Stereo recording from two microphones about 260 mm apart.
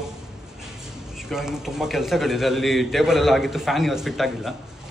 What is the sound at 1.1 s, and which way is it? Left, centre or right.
A man's voice, centre.